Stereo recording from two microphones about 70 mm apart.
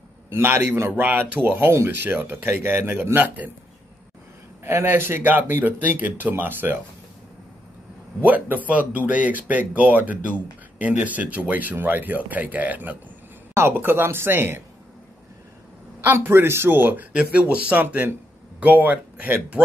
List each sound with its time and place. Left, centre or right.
0.3 s speech: right
4.6 s speech: right
8.2 s speech: right
16.0 s speech: right
17.1 s speech: centre